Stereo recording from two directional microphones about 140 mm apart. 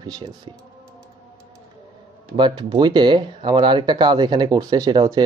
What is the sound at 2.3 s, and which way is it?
Speech, 35° right (ahead or behind).